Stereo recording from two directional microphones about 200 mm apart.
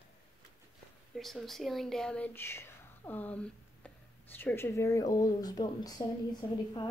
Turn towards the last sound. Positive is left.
turn(degrees=15)  # may be behind; listen again after turning